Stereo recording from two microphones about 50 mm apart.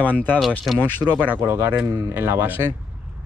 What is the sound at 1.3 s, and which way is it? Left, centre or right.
Speech, right.